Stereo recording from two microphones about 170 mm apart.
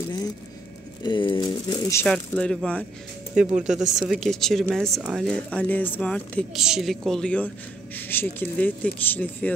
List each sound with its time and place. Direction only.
1.0 s speech: 30° left (ahead or behind)
2.0 s speech: 5° left (ahead or behind)
3.3 s speech: 5° right (ahead or behind)